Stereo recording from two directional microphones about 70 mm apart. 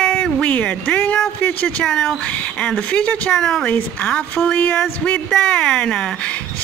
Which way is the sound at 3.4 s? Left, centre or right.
Centre.